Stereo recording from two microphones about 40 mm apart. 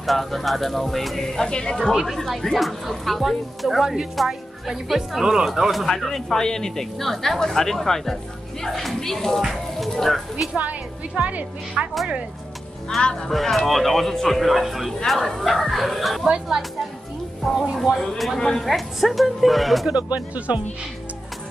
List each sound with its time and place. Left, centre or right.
0.0 s speech: centre
3.8 s a woman's voice: centre
5.5 s speech: centre
9.4 s speech: centre
9.8 s speech: centre
10.6 s a woman's voice: right
13.0 s speech: left
13.3 s speech: centre
16.3 s a woman's voice: centre
17.5 s speech: centre
19.9 s a woman's voice: right